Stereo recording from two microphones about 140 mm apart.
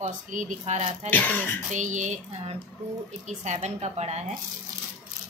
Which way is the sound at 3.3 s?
55° right (ahead or behind).